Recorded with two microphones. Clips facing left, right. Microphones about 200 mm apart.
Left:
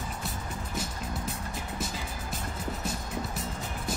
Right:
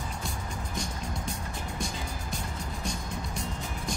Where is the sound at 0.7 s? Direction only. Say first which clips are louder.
Left 1 dB; 5° left (ahead or behind).